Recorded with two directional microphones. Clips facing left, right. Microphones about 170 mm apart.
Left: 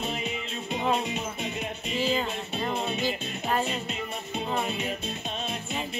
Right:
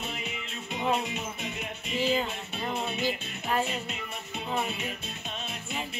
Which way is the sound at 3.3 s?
30° left (ahead or behind).